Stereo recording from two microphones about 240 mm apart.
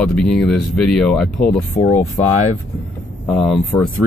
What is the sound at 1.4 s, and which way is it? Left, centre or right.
Speech, left.